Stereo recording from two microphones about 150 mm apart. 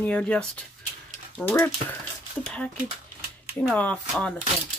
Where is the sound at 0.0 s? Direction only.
5° left (ahead or behind).